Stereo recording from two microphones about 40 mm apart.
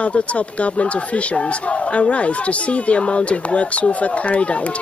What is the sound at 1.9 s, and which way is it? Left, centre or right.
Speech, left.